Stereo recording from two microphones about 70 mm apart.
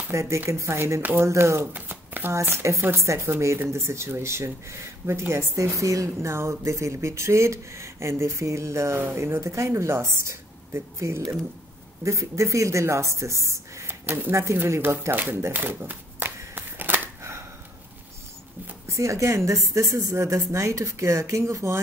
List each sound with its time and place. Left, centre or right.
0.1 s a woman's voice: right
2.4 s a woman's voice: right
13.8 s a sound: right
14.3 s a woman's voice: right
15.1 s shuffling cards: right
18.9 s speech: right